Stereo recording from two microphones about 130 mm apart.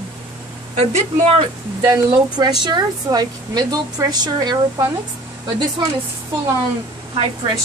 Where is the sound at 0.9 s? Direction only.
50° right (ahead or behind).